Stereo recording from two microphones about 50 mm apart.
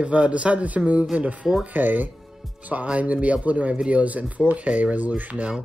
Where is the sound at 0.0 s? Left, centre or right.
Right.